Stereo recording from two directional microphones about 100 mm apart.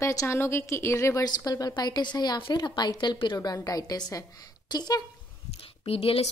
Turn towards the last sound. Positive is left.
turn(degrees=75)  # may be behind; listen again after turning